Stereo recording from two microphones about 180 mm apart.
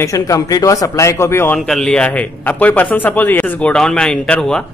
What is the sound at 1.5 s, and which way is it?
A man's voice, 5° left (ahead or behind).